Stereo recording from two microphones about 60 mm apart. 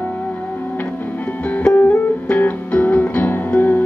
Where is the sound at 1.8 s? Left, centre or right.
Left.